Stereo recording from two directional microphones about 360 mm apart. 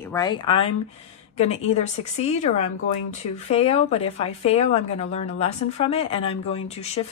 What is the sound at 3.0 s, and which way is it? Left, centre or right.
Speech, centre.